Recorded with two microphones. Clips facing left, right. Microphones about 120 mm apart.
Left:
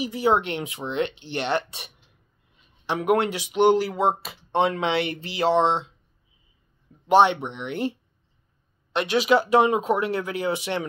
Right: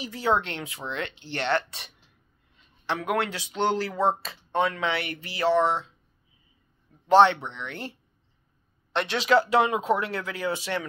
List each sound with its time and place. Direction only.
0.0 s speech: 15° left (ahead or behind)
2.6 s a sound: 15° left (ahead or behind)
3.1 s speech: 20° left (ahead or behind)
4.5 s speech: 25° left (ahead or behind)
7.1 s speech: 15° left (ahead or behind)